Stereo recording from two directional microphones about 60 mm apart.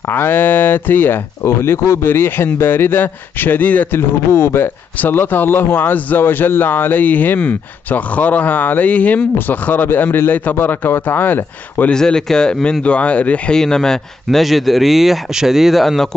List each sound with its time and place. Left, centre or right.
0.1 s speech: left
1.4 s speech: left
3.9 s speech: left
5.0 s speech: left
11.9 s speech: centre
13.6 s speech: centre